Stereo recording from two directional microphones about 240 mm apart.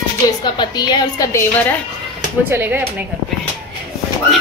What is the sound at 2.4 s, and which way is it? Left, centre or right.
Speech, centre.